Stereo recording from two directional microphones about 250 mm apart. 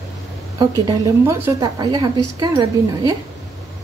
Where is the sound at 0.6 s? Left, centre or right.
Centre.